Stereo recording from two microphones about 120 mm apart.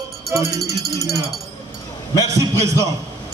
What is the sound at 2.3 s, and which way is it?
Speech, 25° right (ahead or behind).